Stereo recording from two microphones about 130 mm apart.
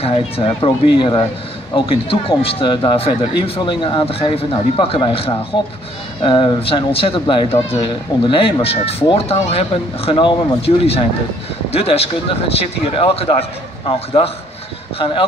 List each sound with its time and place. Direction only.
0.0 s speech: 45° left (ahead or behind)